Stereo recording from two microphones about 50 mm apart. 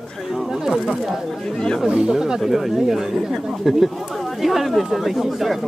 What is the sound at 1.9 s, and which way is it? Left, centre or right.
Speech, centre.